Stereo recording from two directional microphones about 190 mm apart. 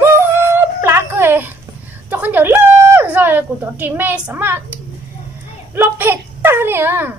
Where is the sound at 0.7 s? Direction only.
15° right (ahead or behind).